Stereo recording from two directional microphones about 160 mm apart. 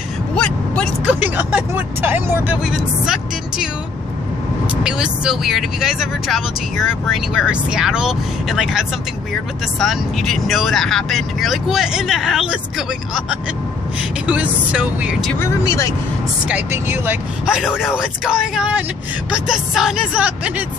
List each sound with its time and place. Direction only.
0.3 s a sound: 5° left (ahead or behind)
1.2 s speech: 10° right (ahead or behind)
4.8 s speech: 5° right (ahead or behind)
15.3 s speech: 15° left (ahead or behind)
16.4 s speech: 10° right (ahead or behind)